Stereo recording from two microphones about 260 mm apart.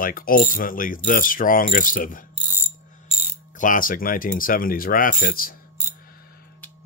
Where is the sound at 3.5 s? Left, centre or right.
Left.